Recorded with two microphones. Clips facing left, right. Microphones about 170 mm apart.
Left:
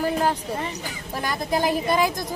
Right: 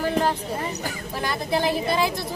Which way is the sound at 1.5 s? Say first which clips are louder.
Left 1 dB; 40° left (ahead or behind).